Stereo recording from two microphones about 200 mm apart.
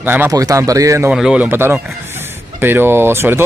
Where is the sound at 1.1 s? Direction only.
5° right (ahead or behind).